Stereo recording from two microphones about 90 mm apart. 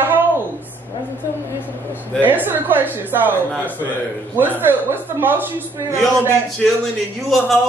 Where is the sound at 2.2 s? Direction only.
20° right (ahead or behind).